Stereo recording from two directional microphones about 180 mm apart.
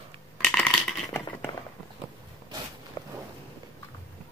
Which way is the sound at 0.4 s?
5° left (ahead or behind).